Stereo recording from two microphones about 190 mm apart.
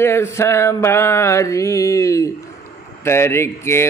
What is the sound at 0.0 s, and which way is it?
Speech, 15° left (ahead or behind).